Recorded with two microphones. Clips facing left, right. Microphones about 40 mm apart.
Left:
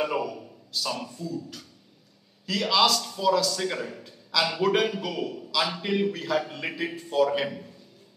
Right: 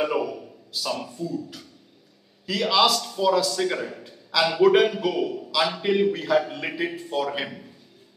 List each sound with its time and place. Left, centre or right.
0.0 s a man's voice: centre